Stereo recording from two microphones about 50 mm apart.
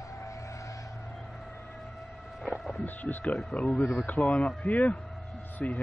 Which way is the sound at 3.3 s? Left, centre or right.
Left.